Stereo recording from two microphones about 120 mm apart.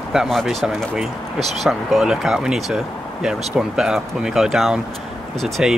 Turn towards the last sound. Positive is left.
turn(degrees=-5)  # may be behind; listen again after turning